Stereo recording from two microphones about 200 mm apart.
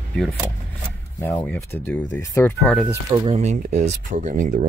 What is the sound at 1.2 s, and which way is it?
Speech, 10° left (ahead or behind).